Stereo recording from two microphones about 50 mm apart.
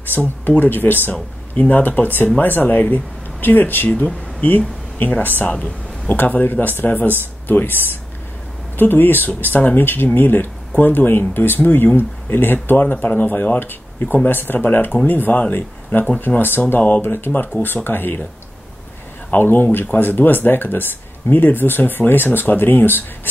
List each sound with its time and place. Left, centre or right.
0.1 s speech: left
3.9 s speech: left
4.5 s speech: left
5.4 s speech: left
6.1 s speech: left
12.6 s speech: left
19.3 s speech: left